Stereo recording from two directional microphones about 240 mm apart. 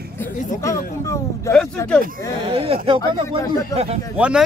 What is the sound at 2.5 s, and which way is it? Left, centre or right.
Speech, right.